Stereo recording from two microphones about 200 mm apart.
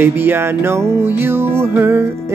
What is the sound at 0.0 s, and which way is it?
Music, 10° right (ahead or behind).